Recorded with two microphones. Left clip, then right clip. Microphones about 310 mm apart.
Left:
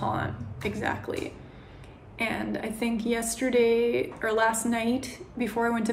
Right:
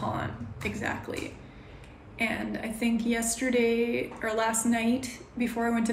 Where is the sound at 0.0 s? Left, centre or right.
Centre.